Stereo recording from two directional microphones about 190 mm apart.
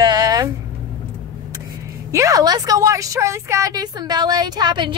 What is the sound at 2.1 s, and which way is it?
A woman's voice, 15° right (ahead or behind).